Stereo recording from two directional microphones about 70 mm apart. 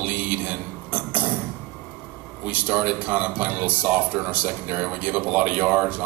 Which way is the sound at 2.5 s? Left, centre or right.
Right.